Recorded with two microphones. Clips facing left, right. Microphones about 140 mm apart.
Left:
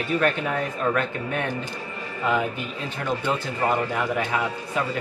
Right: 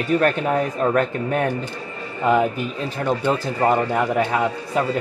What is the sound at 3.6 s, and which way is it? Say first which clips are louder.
Speech: right 5 dB; 30° right (ahead or behind).